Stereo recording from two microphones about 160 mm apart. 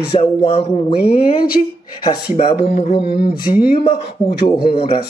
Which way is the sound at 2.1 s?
40° left (ahead or behind).